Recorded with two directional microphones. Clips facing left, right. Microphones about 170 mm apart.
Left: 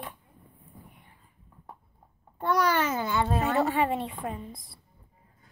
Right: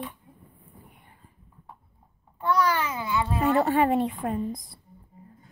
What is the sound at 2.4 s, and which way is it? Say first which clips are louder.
A child's voice: right 1 dB; 45° left (ahead or behind).